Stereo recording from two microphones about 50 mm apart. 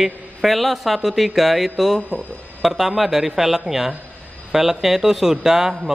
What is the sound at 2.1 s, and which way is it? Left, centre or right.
Speech, right.